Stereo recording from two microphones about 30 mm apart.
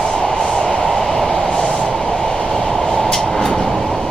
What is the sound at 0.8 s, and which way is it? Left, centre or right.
Vehicle, centre.